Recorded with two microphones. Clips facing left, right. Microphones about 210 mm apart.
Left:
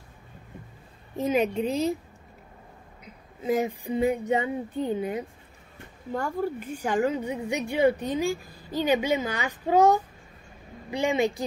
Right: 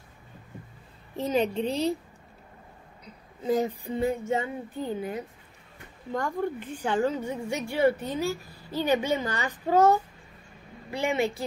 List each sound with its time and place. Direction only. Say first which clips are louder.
1.1 s a woman's voice: left 2 dB; 10° left (ahead or behind)
3.4 s a woman's voice: even; 10° left (ahead or behind)
6.1 s a woman's voice: left 1 dB; 5° left (ahead or behind)